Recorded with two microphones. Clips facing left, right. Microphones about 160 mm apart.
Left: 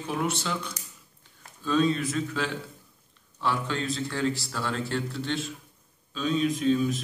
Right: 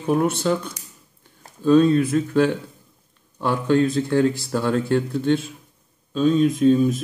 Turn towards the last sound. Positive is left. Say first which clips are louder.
# right 8 dB
turn(degrees=-45)  # may be behind; listen again after turning